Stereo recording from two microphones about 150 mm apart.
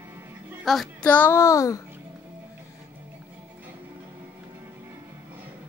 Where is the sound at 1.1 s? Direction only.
15° left (ahead or behind).